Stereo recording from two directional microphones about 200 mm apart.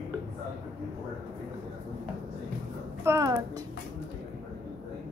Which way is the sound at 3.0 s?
15° right (ahead or behind).